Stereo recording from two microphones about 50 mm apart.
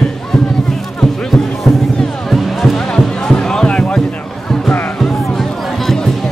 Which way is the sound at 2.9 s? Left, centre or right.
Centre.